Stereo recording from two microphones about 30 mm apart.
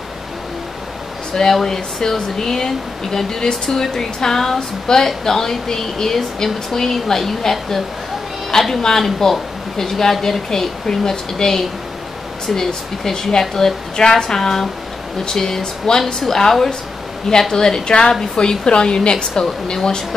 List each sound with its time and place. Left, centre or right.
1.3 s speech: centre
9.2 s a woman's voice: centre
13.9 s a woman's voice: left